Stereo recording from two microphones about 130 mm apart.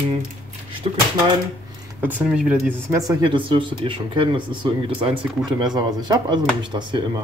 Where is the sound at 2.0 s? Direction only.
15° right (ahead or behind).